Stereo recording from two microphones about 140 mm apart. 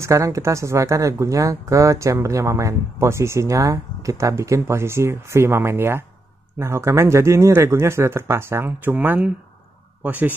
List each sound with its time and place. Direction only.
0.0 s speech: 20° right (ahead or behind)